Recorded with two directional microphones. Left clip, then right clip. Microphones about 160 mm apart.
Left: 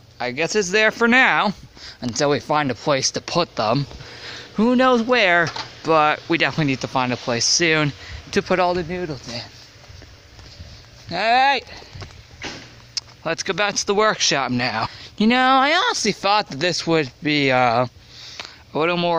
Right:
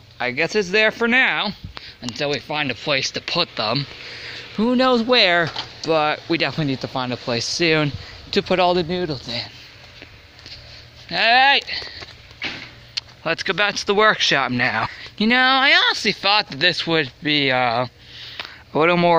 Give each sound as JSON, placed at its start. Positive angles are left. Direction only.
{"t": 0.2, "sound": "speech", "side_deg": 10}
{"t": 2.0, "sound": "speech", "side_deg": 50}
{"t": 4.6, "sound": "speech", "side_deg": 5}
{"t": 7.5, "sound": "speech", "side_deg": -5}
{"t": 8.7, "sound": "speech", "side_deg": -20}
{"t": 11.1, "sound": "speech", "side_deg": 25}
{"t": 13.2, "sound": "speech", "side_deg": 10}
{"t": 15.4, "sound": "speech", "side_deg": 35}
{"t": 18.4, "sound": "a sound", "side_deg": 0}